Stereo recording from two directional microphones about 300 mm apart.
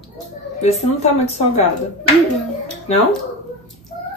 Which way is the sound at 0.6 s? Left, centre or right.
Left.